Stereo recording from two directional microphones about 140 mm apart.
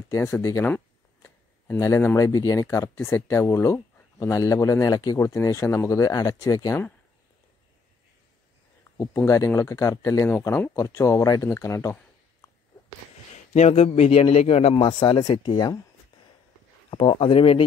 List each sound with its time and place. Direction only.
0.1 s speech: 20° left (ahead or behind)
8.9 s speech: 15° left (ahead or behind)
13.5 s a man's voice: 50° left (ahead or behind); by 15.8 s 30° left (ahead or behind)
16.9 s a man's voice: 40° left (ahead or behind)